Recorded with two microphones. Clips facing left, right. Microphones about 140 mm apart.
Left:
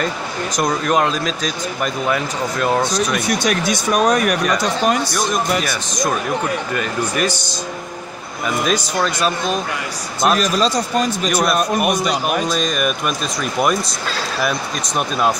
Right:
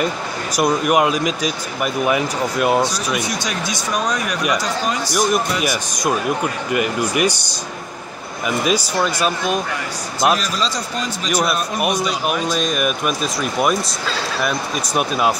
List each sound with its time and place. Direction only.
0.6 s speech: 10° right (ahead or behind)
3.2 s speech: 60° left (ahead or behind)
5.1 s speech: 10° right (ahead or behind)
8.6 s speech: 10° right (ahead or behind)
10.3 s a man's voice: 50° left (ahead or behind)
11.2 s speech: centre (ahead or behind)
15.0 s speech: 5° right (ahead or behind)